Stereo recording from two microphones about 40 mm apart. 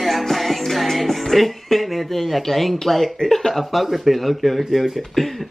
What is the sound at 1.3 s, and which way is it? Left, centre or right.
Speech, centre.